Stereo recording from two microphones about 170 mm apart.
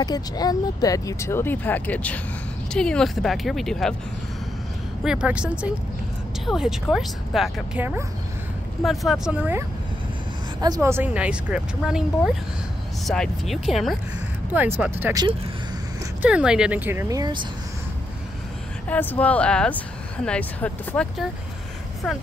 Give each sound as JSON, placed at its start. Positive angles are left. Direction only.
{"t": 0.0, "sound": "speech", "side_deg": 25}
{"t": 5.0, "sound": "speech", "side_deg": -5}
{"t": 8.8, "sound": "speech", "side_deg": 0}
{"t": 14.8, "sound": "speech", "side_deg": -10}
{"t": 16.2, "sound": "speech", "side_deg": -5}
{"t": 18.9, "sound": "speech", "side_deg": 10}